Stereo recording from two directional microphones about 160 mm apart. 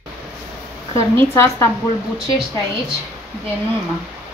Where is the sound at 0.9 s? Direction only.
15° left (ahead or behind).